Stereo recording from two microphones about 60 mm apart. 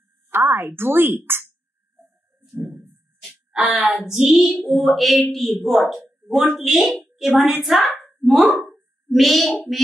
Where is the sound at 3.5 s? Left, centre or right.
Right.